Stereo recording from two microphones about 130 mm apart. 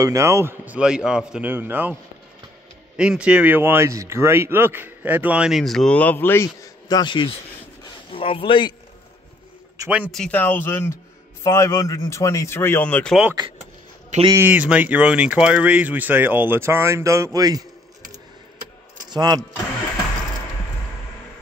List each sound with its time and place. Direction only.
0.0 s a man's voice: 25° right (ahead or behind)
0.7 s speech: 5° right (ahead or behind)
3.0 s a man's voice: 5° right (ahead or behind); by 8.7 s 40° left (ahead or behind)
9.8 s speech: 10° right (ahead or behind)
10.1 s speech: 5° left (ahead or behind)
10.4 s a man's voice: 15° left (ahead or behind)
14.3 s speech: 15° right (ahead or behind)
19.0 s speech: 30° right (ahead or behind)